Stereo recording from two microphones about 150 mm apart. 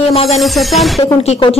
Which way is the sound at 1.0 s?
45° left (ahead or behind).